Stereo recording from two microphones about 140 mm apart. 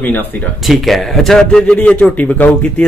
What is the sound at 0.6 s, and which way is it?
A man's voice, centre (ahead or behind).